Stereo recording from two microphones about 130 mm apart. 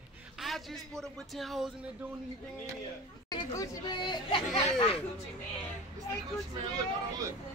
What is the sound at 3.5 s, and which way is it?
Speech, 25° left (ahead or behind).